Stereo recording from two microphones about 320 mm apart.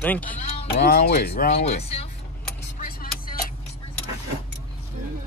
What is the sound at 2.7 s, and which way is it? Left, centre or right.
Music, left.